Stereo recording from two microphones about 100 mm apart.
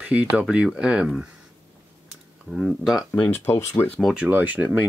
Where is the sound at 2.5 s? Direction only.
5° right (ahead or behind).